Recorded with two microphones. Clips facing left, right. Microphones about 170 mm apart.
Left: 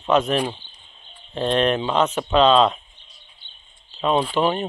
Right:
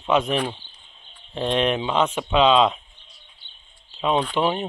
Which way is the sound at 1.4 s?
15° right (ahead or behind).